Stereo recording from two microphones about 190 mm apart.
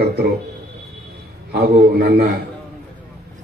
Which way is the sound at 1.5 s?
55° right (ahead or behind).